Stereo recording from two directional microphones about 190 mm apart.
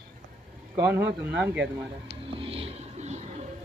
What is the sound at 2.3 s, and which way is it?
Music, 30° right (ahead or behind).